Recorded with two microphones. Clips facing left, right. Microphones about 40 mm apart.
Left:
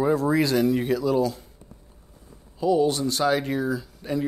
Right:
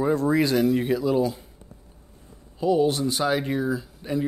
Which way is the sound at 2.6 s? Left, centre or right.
Centre.